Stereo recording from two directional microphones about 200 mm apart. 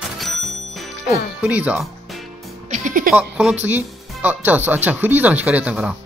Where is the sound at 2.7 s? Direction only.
40° right (ahead or behind).